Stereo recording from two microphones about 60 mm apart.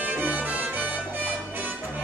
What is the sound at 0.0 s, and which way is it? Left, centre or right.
Music, right.